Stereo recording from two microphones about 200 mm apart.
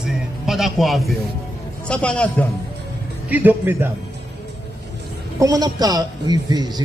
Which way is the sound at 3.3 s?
10° right (ahead or behind).